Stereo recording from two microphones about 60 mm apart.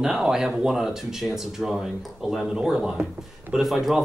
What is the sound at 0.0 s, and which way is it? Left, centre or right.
Speech, centre.